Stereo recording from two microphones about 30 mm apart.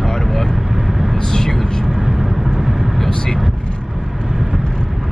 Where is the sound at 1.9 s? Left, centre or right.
Centre.